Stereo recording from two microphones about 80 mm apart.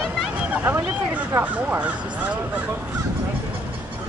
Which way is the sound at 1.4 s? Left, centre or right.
Centre.